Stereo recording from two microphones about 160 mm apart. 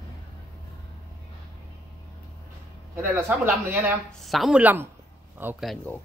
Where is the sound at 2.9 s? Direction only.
15° right (ahead or behind).